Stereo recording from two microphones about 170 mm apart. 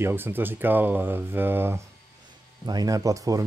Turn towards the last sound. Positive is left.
turn(degrees=-20)  # may be behind; listen again after turning